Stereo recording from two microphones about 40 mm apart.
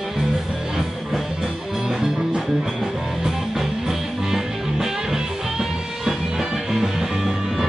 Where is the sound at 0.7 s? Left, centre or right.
Centre.